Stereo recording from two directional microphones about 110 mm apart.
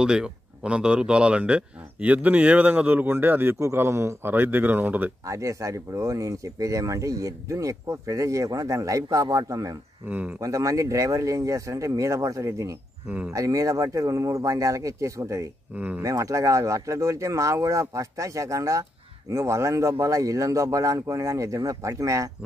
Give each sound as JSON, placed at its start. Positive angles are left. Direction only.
{"t": 0.0, "sound": "speech", "side_deg": -5}
{"t": 5.2, "sound": "speech", "side_deg": -30}
{"t": 10.0, "sound": "speech", "side_deg": -15}
{"t": 10.4, "sound": "speech", "side_deg": -30}
{"t": 15.7, "sound": "speech", "side_deg": -15}
{"t": 16.0, "sound": "speech", "side_deg": -30}